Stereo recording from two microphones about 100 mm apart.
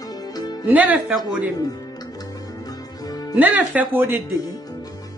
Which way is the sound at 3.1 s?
40° left (ahead or behind).